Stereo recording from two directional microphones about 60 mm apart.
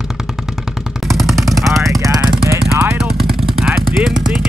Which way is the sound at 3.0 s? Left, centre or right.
Centre.